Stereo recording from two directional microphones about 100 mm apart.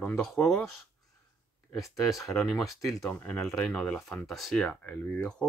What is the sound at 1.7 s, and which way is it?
Speech, centre (ahead or behind).